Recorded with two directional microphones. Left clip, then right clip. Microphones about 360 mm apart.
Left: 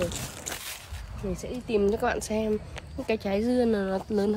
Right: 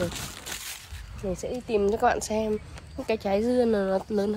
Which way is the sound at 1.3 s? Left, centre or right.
Centre.